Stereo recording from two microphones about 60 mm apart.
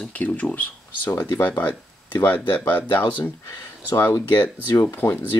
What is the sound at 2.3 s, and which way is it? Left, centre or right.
Speech, left.